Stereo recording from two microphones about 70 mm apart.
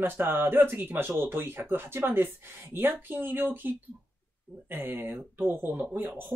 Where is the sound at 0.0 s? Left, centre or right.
Right.